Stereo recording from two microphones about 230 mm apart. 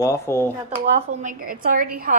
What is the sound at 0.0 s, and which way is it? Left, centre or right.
Speech, centre.